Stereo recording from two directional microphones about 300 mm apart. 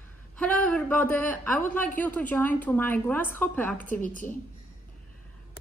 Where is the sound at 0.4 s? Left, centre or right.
Centre.